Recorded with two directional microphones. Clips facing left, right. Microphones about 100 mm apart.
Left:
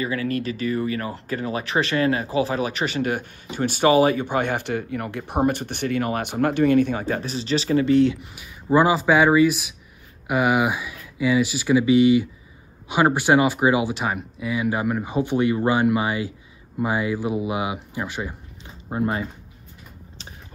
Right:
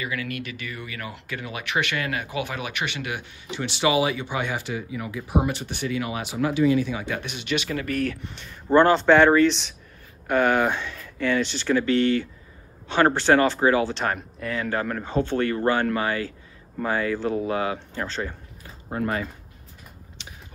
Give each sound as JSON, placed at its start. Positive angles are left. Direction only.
{"t": 0.0, "sound": "speech", "side_deg": 35}
{"t": 5.4, "sound": "speech", "side_deg": 50}
{"t": 7.1, "sound": "speech", "side_deg": 35}
{"t": 8.3, "sound": "speech", "side_deg": 10}
{"t": 18.9, "sound": "speech", "side_deg": 25}